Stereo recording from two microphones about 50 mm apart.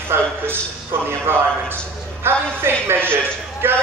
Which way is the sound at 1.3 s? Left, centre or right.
Right.